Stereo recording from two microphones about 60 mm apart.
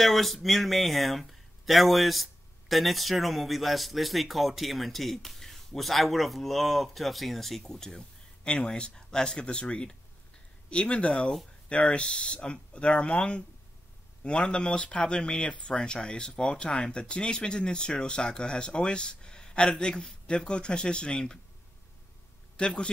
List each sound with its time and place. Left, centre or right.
0.0 s speech: centre
22.6 s speech: centre